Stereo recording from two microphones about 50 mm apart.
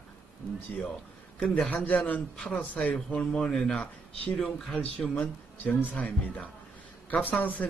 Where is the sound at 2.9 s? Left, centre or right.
Centre.